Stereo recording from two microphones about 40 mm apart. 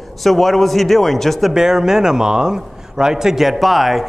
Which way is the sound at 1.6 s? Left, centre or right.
Centre.